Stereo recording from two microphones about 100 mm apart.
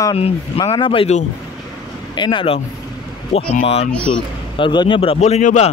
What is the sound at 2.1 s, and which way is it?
Speech, 55° left (ahead or behind).